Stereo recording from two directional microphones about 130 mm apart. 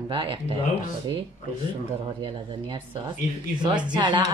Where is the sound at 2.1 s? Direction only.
35° right (ahead or behind).